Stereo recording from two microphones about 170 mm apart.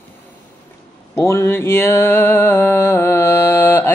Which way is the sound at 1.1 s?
15° left (ahead or behind).